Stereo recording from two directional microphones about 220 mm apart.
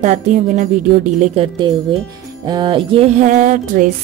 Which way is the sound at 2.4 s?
20° right (ahead or behind).